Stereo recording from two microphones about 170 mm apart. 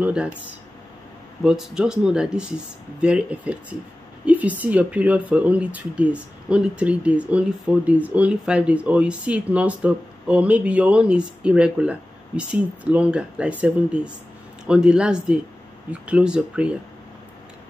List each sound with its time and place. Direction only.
0.0 s speech: 5° right (ahead or behind)
1.4 s speech: 5° right (ahead or behind)